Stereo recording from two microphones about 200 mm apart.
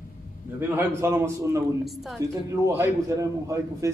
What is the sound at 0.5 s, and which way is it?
A man's voice, 10° right (ahead or behind).